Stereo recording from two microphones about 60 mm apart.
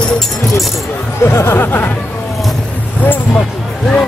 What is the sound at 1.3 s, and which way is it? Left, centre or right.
Speech, left.